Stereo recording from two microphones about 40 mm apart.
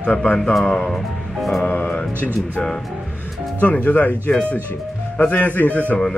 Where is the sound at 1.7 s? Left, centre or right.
Left.